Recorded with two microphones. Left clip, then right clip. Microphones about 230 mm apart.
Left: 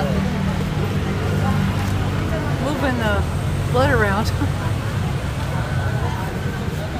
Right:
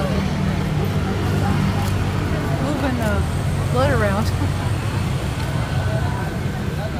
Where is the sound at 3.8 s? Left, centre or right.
Left.